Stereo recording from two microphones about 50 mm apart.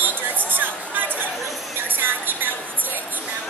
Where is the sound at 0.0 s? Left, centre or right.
Right.